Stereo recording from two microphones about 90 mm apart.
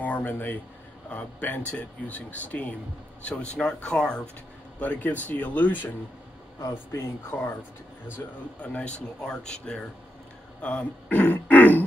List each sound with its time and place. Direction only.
0.0 s speech: 20° left (ahead or behind)
6.9 s speech: 30° left (ahead or behind)
8.5 s speech: 15° left (ahead or behind)